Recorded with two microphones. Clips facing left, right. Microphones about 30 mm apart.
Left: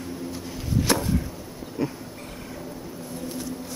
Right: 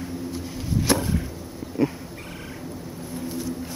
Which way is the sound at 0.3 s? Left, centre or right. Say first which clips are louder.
Even; centre.